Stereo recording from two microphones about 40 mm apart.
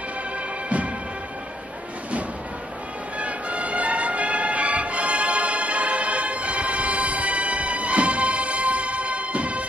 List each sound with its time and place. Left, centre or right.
3.2 s music: right